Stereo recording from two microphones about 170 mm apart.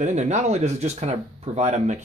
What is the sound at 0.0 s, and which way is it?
Speech, 45° right (ahead or behind).